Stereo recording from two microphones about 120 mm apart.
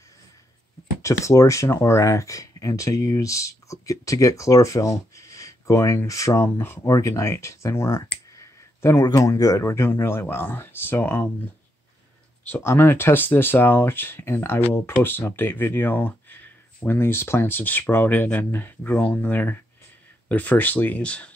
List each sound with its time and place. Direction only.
1.0 s speech: 25° left (ahead or behind)
12.4 s speech: 15° left (ahead or behind)